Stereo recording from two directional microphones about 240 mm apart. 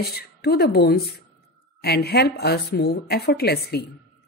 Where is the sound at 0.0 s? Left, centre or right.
Left.